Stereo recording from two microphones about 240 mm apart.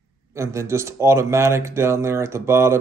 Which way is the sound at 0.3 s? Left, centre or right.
Centre.